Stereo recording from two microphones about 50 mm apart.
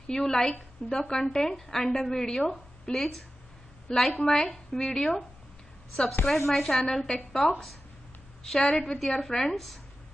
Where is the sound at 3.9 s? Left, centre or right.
Centre.